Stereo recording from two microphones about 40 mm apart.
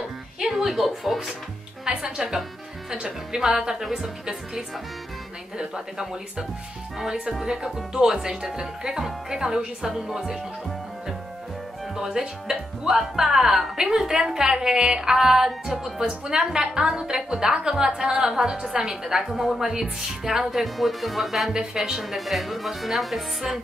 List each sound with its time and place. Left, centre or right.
0.4 s speech: centre
1.9 s speech: centre
7.4 s speech: centre
12.0 s speech: centre